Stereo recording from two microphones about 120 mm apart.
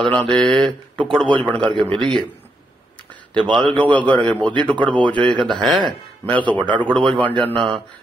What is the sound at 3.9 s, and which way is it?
Speech, 10° left (ahead or behind).